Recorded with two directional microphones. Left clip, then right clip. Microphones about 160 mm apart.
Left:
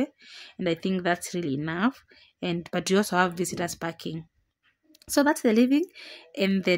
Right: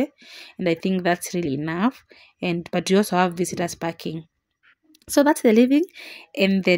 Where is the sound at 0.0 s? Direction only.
15° right (ahead or behind).